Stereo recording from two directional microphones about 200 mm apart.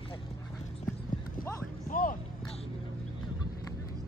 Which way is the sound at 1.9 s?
45° left (ahead or behind).